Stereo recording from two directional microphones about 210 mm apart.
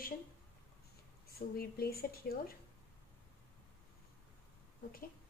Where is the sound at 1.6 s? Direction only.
45° left (ahead or behind).